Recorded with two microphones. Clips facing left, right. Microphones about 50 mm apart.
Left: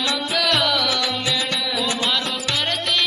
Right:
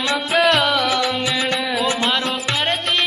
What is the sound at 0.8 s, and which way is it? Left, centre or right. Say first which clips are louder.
Music: right 3 dB; right.